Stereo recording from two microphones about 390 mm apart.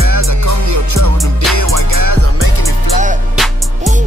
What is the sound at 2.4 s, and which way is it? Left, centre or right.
Music, left.